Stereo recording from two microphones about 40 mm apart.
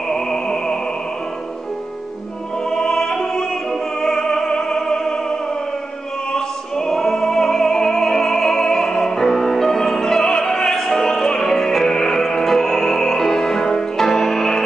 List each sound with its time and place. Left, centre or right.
0.1 s music: centre
2.7 s opera: centre
6.3 s music: centre